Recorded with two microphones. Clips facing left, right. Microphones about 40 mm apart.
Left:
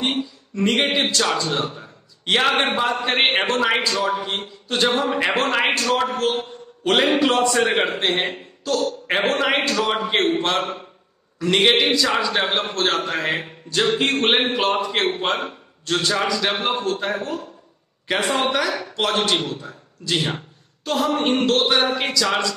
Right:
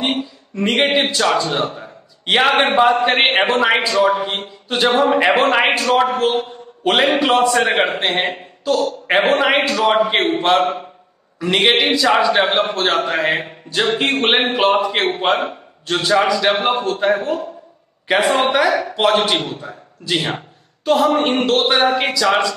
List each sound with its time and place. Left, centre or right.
0.0 s a man's voice: centre